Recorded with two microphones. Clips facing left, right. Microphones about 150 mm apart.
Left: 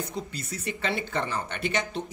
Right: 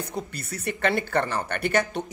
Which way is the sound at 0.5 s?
60° right (ahead or behind).